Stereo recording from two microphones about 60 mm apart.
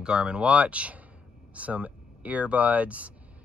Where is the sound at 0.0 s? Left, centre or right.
Centre.